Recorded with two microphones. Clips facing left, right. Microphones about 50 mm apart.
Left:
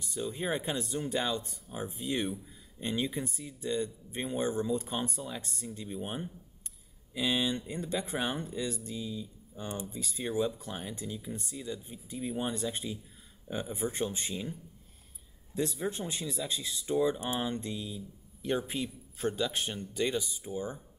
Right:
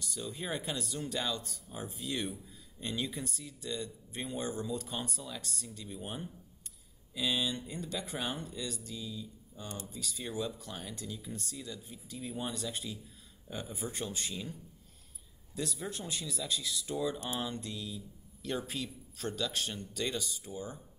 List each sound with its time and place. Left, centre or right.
0.0 s speech: left